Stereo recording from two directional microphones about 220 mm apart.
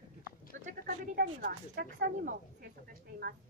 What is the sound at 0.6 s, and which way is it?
Speech, 35° right (ahead or behind).